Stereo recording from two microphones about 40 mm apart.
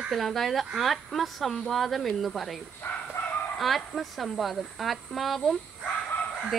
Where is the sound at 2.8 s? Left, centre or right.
Left.